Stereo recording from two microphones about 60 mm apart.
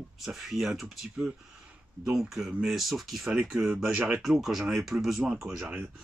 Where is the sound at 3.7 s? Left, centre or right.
Right.